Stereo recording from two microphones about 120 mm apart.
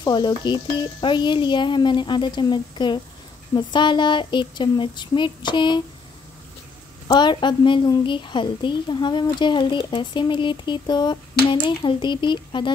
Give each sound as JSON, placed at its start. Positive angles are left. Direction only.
{"t": 0.0, "sound": "a woman's voice", "side_deg": 40}
{"t": 7.1, "sound": "a woman's voice", "side_deg": 40}